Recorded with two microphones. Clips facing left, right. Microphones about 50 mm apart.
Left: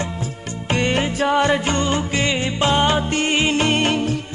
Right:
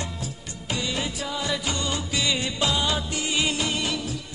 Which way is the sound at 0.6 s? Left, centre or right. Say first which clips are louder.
Left 9 dB; left.